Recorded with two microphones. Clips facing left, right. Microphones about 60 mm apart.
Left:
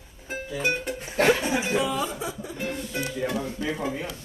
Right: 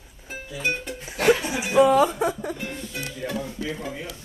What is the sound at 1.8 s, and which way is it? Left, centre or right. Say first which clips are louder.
Speech: right 10 dB; right.